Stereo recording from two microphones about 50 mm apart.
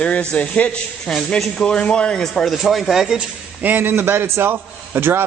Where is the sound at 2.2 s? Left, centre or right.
Centre.